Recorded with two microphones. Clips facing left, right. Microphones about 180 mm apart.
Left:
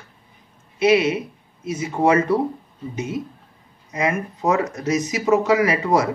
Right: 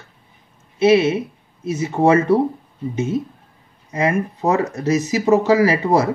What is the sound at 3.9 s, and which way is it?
Speech, 35° right (ahead or behind).